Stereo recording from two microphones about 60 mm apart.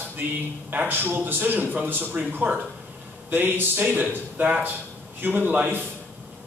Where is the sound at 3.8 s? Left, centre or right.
Right.